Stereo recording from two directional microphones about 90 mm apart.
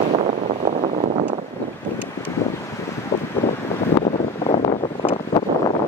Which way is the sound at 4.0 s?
90° left.